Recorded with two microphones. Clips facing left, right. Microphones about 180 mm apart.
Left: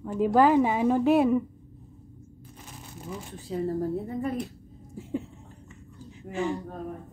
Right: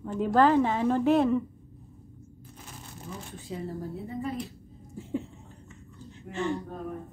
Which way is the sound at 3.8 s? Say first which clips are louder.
Left 6 dB; 50° left (ahead or behind).